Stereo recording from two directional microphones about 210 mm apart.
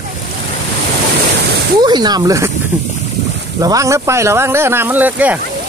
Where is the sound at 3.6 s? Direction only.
15° right (ahead or behind).